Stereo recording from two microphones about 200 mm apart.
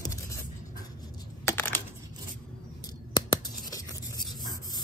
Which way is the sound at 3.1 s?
20° left (ahead or behind).